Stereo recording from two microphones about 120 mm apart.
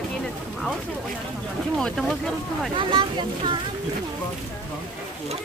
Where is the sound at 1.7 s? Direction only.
5° left (ahead or behind).